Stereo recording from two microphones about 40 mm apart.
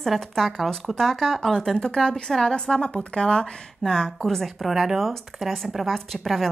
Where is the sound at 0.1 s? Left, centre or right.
Centre.